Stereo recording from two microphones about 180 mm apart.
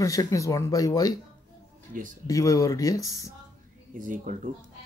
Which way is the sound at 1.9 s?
45° right (ahead or behind).